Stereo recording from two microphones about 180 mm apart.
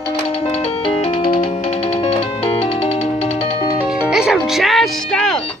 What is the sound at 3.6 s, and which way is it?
Music, 15° left (ahead or behind).